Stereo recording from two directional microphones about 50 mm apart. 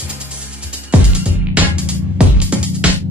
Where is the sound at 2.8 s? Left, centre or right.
Right.